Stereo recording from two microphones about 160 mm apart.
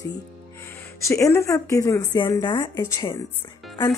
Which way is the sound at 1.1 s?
15° left (ahead or behind).